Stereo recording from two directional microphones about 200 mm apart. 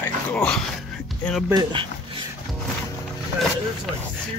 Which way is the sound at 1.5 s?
20° right (ahead or behind).